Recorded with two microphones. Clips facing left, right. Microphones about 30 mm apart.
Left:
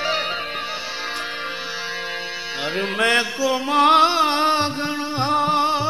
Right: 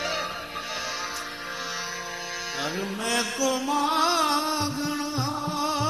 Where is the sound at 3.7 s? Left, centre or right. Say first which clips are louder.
Left 12 dB; left.